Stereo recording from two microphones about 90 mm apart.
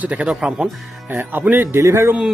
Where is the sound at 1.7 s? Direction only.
30° right (ahead or behind).